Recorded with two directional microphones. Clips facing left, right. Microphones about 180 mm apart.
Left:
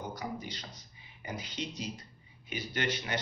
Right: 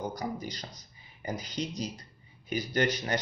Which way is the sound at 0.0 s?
40° right (ahead or behind).